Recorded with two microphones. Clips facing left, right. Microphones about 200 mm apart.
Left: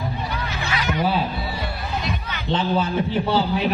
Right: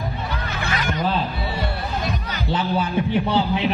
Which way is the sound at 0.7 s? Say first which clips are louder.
Left 1 dB; 50° right (ahead or behind).